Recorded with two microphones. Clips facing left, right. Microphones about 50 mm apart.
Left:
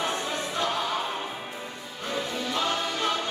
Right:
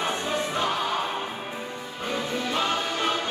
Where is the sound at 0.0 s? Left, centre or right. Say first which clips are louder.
Right 2 dB; centre.